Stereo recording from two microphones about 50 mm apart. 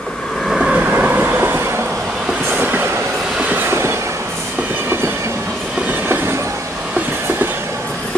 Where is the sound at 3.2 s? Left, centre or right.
Centre.